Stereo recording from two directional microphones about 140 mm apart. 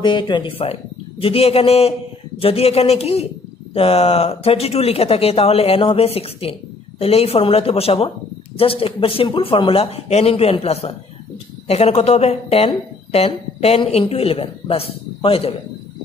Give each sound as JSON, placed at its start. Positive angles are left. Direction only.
{"t": 0.0, "sound": "speech", "side_deg": 35}